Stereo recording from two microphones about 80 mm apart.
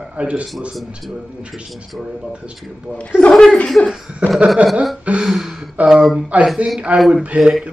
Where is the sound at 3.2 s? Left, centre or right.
Centre.